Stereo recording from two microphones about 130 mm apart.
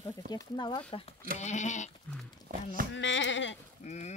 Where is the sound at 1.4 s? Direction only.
65° left (ahead or behind).